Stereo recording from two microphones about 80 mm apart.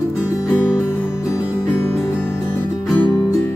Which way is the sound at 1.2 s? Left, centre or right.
Left.